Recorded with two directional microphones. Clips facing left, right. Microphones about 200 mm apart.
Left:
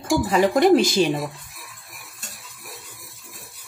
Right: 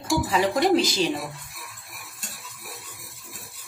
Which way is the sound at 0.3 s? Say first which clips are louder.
Left 6 dB; 50° left (ahead or behind).